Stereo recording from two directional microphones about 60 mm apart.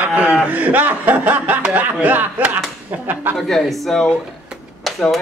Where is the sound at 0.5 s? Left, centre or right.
Right.